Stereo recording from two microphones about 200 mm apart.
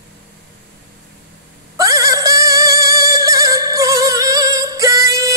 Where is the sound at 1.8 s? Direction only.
15° right (ahead or behind).